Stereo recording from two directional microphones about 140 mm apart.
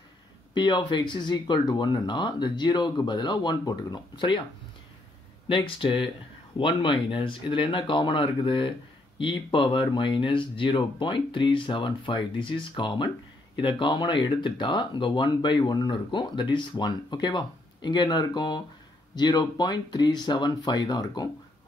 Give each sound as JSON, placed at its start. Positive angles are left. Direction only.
{"t": 0.6, "sound": "speech", "side_deg": 30}
{"t": 5.5, "sound": "speech", "side_deg": 40}